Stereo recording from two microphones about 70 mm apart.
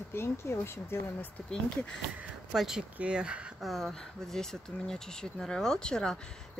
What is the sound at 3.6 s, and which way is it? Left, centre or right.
Speech, centre.